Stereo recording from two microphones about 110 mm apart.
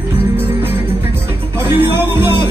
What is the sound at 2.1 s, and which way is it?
Music, 45° left (ahead or behind).